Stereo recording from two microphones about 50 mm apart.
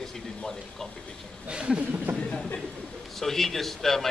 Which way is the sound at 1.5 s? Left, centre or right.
Right.